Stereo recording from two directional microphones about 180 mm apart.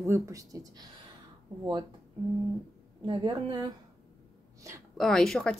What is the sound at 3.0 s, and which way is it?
Speech, 25° right (ahead or behind).